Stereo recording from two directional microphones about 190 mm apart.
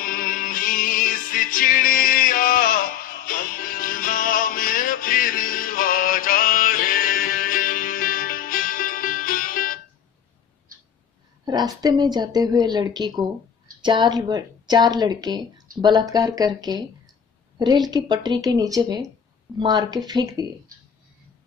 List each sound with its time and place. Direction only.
0.0 s music: 45° left (ahead or behind)
11.4 s speech: 20° right (ahead or behind)